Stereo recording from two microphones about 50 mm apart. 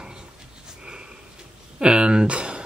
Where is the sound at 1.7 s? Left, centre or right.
Centre.